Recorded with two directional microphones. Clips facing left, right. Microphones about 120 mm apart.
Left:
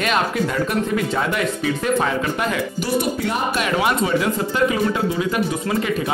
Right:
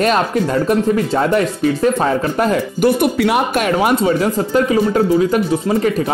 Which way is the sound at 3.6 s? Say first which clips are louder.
Right 5 dB; 40° right (ahead or behind).